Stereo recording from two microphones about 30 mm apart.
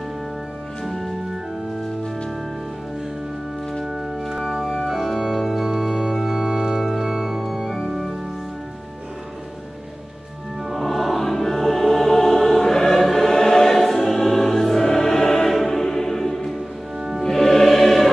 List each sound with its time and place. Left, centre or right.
0.8 s organ: centre
3.8 s organ: centre
5.7 s organ: centre
7.4 s music: centre
10.8 s music: centre
11.2 s choir: centre
15.5 s music: centre